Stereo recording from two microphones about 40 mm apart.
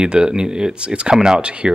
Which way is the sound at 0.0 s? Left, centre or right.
Right.